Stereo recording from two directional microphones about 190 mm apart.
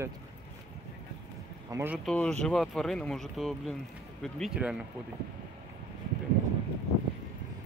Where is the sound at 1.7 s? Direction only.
10° right (ahead or behind).